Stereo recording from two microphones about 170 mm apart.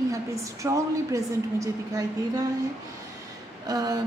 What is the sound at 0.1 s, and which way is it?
A woman's voice, 20° right (ahead or behind).